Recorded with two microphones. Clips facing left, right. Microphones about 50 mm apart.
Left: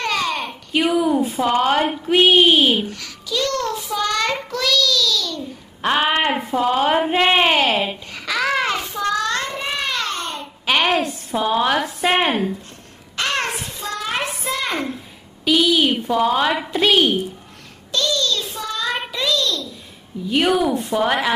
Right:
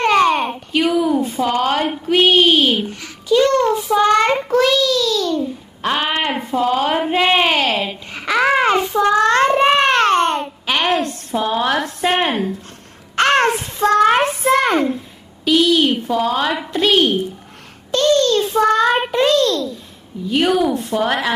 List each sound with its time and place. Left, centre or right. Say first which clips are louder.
0.0 s a sound: right 8 dB; right
0.7 s a sound: right 1 dB; centre
1.5 s speech: left 1 dB; centre
2.9 s a sound: right 10 dB; right
3.7 s child singing: right 8 dB; right
4.5 s a child's voice: right 5 dB; right
5.8 s speech: left 1 dB; centre
8.1 s child singing: right 8 dB; right
10.7 s a woman's voice: even; centre
13.1 s a sound: right 9 dB; right
15.4 s speech: right 2 dB; centre
17.9 s a child's voice: right 7 dB; right
20.2 s speech: right 2 dB; centre